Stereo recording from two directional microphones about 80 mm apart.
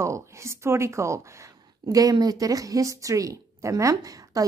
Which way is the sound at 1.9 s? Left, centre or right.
Right.